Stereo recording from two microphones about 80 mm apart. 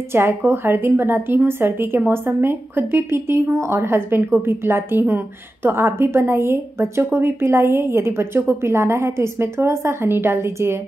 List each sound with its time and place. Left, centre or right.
0.1 s a woman's voice: right